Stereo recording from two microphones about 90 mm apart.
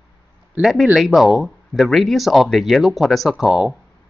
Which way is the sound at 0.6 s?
Centre (ahead or behind).